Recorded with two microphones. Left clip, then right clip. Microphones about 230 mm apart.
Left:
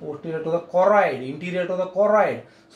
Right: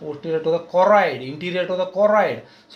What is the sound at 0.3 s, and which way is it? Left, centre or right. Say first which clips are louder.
Speech: right 4 dB; right.